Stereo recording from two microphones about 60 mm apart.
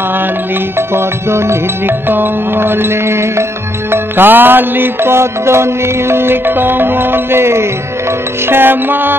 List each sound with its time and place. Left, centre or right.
0.7 s music: right
2.0 s music: right
3.9 s music: right